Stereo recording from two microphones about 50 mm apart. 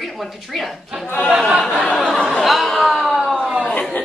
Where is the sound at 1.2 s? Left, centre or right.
Centre.